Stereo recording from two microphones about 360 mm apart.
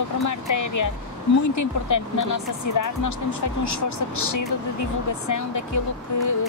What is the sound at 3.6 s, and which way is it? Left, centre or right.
Speech, left.